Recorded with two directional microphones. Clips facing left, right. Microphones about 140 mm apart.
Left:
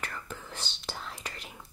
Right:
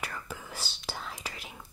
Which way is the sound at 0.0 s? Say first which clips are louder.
Right 1 dB; 5° right (ahead or behind).